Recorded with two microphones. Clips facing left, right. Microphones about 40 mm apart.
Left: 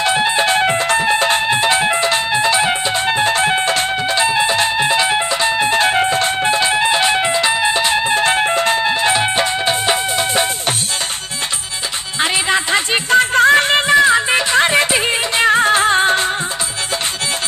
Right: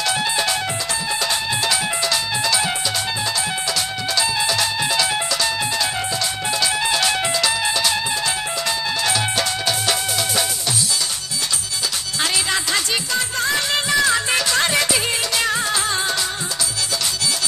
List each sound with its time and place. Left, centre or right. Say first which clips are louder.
0.0 s music: left 6 dB; left
12.2 s music: left 6 dB; left